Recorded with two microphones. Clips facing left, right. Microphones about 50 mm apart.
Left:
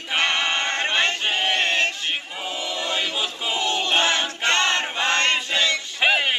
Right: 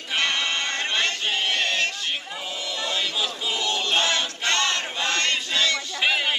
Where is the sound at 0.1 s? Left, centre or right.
Left.